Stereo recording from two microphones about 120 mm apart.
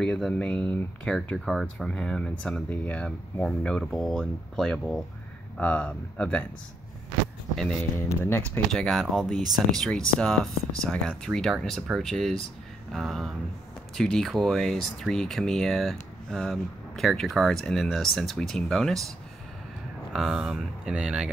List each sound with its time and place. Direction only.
0.0 s speech: 5° left (ahead or behind)
1.1 s speech: 5° left (ahead or behind)
7.5 s speech: 5° left (ahead or behind)
8.2 s speech: 20° left (ahead or behind)
8.7 s speech: 5° left (ahead or behind)
20.1 s speech: 5° right (ahead or behind)